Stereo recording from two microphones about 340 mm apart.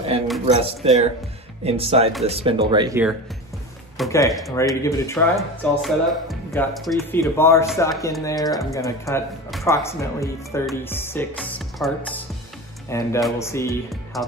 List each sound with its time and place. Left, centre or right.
0.6 s speech: centre
4.0 s speech: centre